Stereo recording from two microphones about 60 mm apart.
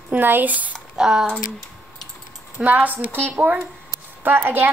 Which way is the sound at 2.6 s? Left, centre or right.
Right.